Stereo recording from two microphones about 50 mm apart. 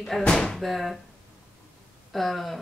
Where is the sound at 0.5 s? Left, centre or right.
Centre.